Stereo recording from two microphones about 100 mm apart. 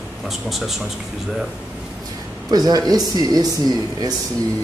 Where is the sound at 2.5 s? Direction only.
40° right (ahead or behind).